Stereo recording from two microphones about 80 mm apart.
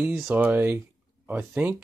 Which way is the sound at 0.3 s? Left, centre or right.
Right.